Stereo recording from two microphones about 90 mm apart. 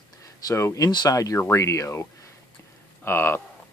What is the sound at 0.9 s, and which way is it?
Speech, 50° left (ahead or behind).